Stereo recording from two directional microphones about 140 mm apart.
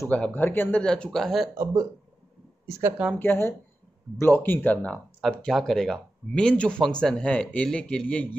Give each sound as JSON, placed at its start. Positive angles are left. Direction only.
{"t": 0.0, "sound": "speech", "side_deg": 15}
{"t": 1.6, "sound": "speech", "side_deg": -25}
{"t": 3.2, "sound": "speech", "side_deg": 15}